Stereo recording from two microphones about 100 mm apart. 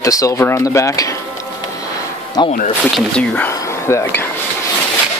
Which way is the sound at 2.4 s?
45° left (ahead or behind).